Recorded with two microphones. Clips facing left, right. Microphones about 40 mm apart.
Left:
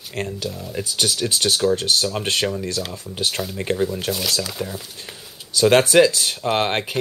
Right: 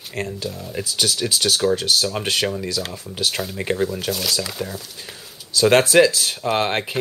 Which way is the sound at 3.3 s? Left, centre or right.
Centre.